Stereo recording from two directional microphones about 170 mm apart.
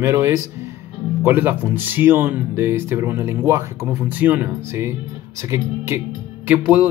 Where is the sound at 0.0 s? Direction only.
15° right (ahead or behind).